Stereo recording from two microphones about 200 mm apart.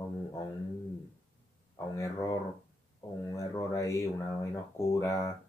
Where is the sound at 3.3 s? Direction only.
15° left (ahead or behind).